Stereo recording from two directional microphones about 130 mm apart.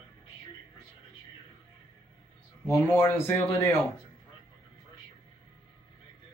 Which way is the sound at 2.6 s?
20° left (ahead or behind).